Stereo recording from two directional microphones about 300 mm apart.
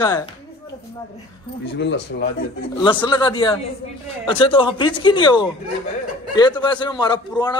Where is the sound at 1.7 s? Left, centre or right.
Left.